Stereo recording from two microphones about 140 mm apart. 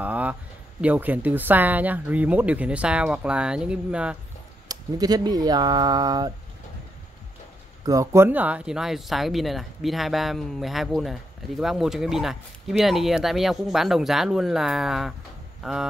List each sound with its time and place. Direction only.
0.0 s a woman's voice: 10° right (ahead or behind)
4.6 s speech: 30° right (ahead or behind)
7.8 s speech: 25° right (ahead or behind); by 15.9 s 5° right (ahead or behind)